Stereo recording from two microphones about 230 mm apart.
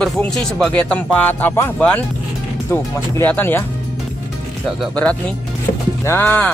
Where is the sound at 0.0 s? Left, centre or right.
Centre.